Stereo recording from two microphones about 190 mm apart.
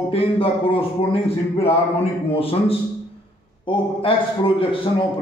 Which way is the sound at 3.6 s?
25° left (ahead or behind).